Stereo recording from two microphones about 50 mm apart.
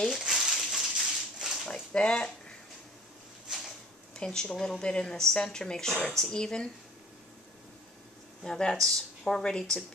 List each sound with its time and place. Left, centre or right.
0.2 s a sound: centre
1.7 s dog: centre
4.1 s speech: centre
8.5 s speech: centre